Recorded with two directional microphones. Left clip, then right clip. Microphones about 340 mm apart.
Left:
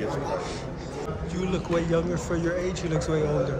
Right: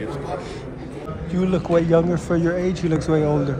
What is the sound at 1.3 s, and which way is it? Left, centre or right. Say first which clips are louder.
A man's voice: right 9 dB; centre.